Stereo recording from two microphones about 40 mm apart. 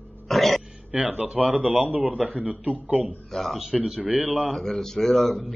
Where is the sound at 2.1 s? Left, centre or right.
Right.